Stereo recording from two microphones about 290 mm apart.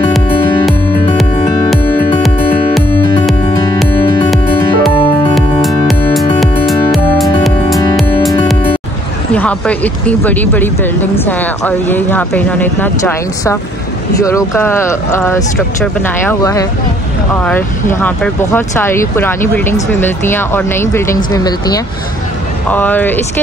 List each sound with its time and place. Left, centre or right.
0.0 s music: centre
1.4 s music: centre
4.3 s music: centre
9.3 s speech: centre
14.5 s speech: centre